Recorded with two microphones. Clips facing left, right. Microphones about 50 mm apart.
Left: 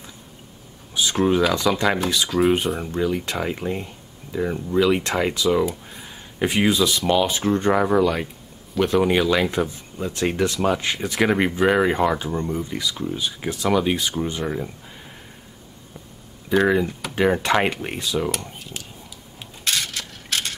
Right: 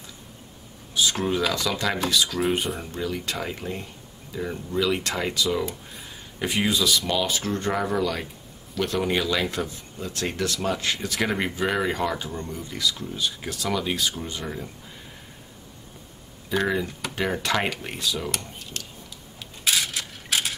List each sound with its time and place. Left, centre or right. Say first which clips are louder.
1.1 s speech: left 6 dB; centre
2.4 s speech: left 6 dB; centre
16.6 s speech: left 6 dB; centre
18.3 s speech: left 3 dB; centre
19.6 s mechanisms: even; centre